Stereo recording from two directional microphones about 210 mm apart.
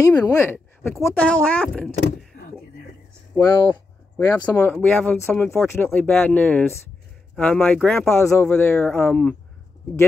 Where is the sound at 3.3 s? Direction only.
15° left (ahead or behind).